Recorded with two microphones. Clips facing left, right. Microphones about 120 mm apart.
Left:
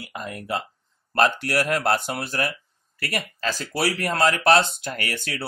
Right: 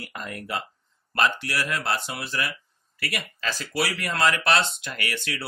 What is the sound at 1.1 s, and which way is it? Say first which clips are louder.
Speech: left 4 dB; 45° left (ahead or behind).